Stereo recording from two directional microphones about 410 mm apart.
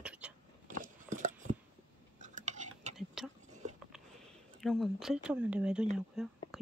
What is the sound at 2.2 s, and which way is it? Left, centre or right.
Cutlery, centre.